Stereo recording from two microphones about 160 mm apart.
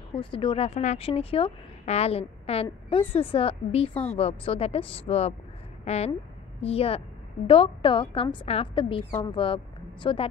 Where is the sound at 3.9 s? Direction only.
10° left (ahead or behind).